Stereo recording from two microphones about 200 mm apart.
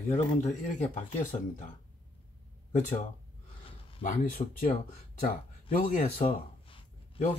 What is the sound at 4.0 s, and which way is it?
Speech, 40° left (ahead or behind).